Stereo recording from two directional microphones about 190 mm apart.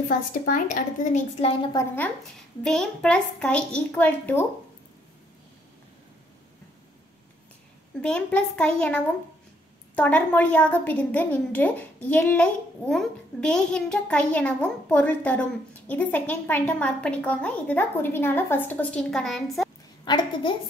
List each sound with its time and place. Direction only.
0.3 s a woman's voice: 45° left (ahead or behind)
1.6 s a woman's voice: 20° left (ahead or behind)
2.6 s a child's voice: 5° left (ahead or behind)
8.0 s a woman's voice: 5° left (ahead or behind)
20.1 s a woman's voice: 25° left (ahead or behind)